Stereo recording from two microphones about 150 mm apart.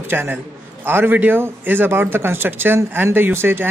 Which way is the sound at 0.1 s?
15° right (ahead or behind).